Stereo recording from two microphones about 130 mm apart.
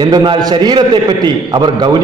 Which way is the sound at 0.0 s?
35° right (ahead or behind).